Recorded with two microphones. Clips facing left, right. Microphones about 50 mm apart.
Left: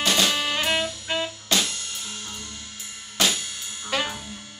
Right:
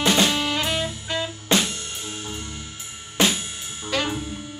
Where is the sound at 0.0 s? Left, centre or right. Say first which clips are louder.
Right 3 dB; right.